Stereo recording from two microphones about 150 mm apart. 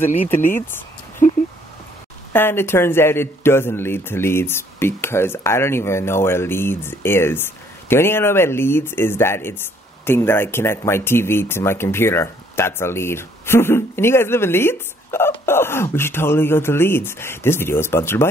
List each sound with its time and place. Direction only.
0.0 s speech: 15° left (ahead or behind)
2.3 s speech: 15° left (ahead or behind)